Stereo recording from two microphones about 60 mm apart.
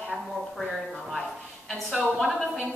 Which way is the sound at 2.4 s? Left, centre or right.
Centre.